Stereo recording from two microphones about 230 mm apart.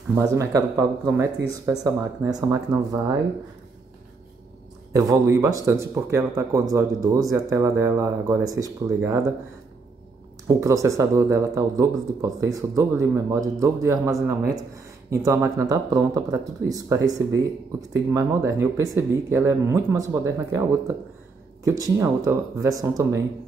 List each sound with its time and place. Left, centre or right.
0.1 s speech: centre
4.9 s speech: centre
10.6 s speech: centre